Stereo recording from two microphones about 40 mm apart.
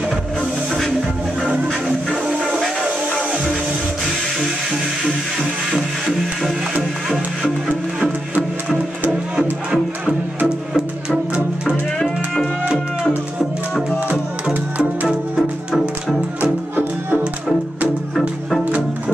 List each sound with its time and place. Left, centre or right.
2.3 s music: right
5.7 s music: centre
9.4 s music: centre